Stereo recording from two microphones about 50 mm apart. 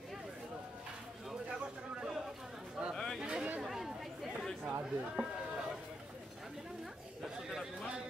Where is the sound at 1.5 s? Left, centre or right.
Centre.